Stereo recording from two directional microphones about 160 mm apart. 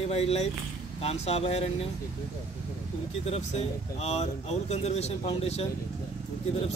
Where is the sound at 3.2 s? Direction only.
40° left (ahead or behind).